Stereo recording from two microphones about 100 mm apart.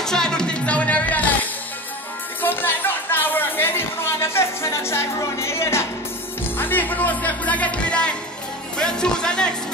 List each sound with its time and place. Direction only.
0.0 s music: 5° left (ahead or behind)
2.4 s a sound: 20° left (ahead or behind)
6.6 s speech: 20° left (ahead or behind)